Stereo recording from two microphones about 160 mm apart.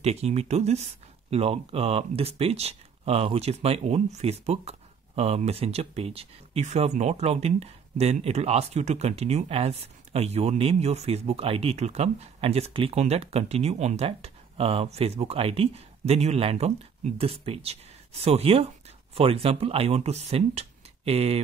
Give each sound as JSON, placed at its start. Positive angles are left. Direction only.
{"t": 0.0, "sound": "speech", "side_deg": -40}